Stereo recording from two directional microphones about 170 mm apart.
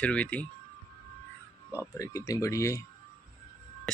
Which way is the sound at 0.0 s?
10° left (ahead or behind).